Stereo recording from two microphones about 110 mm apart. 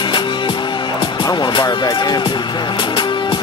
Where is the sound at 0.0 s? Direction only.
45° left (ahead or behind).